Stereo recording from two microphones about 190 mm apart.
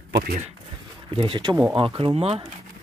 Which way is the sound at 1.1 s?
25° right (ahead or behind).